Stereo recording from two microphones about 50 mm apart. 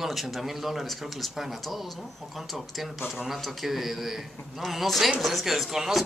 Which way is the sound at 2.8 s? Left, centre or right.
Centre.